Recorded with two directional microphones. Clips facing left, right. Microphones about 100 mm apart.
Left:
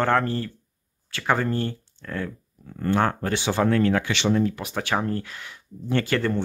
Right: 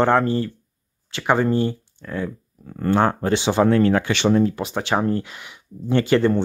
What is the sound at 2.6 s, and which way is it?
Speech, 45° right (ahead or behind).